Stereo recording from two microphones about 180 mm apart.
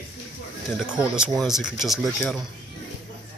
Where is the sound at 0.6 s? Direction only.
5° right (ahead or behind).